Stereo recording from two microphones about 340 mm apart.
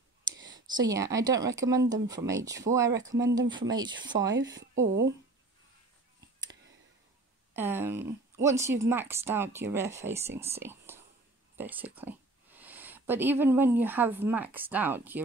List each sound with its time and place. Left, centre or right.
0.5 s a woman's voice: centre
7.5 s a woman's voice: centre